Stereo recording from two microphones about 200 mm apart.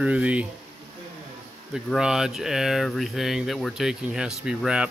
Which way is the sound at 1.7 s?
5° right (ahead or behind).